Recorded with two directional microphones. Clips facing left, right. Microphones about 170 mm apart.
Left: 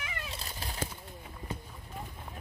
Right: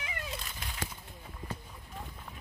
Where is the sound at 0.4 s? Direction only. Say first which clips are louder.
Left 3 dB; 35° left (ahead or behind).